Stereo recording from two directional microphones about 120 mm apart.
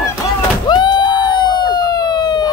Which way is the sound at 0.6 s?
40° left (ahead or behind).